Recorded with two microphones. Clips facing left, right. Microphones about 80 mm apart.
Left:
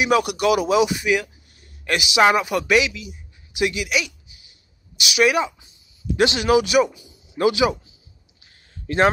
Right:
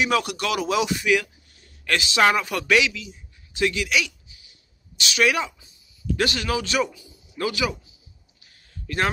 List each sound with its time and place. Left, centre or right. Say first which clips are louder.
0.0 s a man's voice: left 5 dB; centre
6.1 s speech: left 8 dB; centre
8.5 s a sound: left 6 dB; left